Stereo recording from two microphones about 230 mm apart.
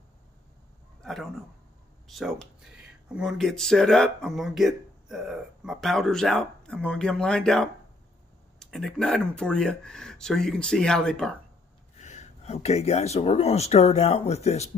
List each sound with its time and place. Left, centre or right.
1.0 s a sound: centre
2.0 s speech: centre
12.0 s speech: left